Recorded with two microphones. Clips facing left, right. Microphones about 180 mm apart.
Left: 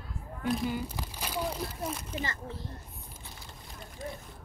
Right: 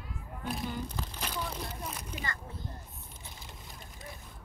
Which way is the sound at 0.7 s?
10° left (ahead or behind).